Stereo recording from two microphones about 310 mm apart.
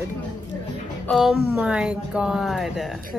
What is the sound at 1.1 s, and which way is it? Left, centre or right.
Speech, centre.